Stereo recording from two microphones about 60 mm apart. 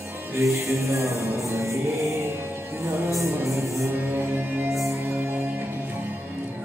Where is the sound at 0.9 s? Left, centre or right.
Right.